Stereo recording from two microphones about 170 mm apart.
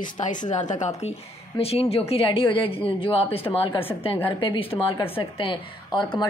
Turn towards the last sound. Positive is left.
turn(degrees=30)  # may be behind; listen again after turning